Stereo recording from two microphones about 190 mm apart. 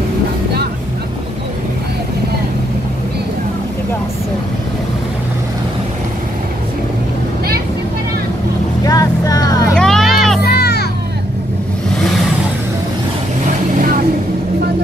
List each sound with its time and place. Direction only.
8.8 s vehicle: 20° left (ahead or behind)
9.8 s a sound: centre (ahead or behind)
10.4 s children playing: 60° left (ahead or behind)
13.7 s vehicle: 45° right (ahead or behind)